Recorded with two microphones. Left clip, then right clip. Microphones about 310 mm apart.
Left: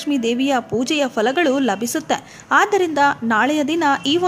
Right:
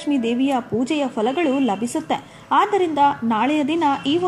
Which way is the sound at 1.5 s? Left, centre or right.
Left.